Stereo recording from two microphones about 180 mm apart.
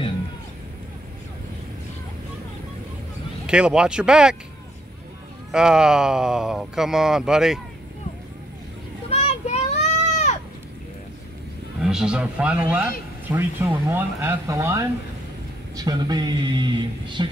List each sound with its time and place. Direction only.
3.4 s speech: 5° right (ahead or behind)
5.5 s speech: 5° right (ahead or behind)
9.1 s children playing: 35° left (ahead or behind)
11.8 s speech: 5° right (ahead or behind); by 17.3 s 25° right (ahead or behind)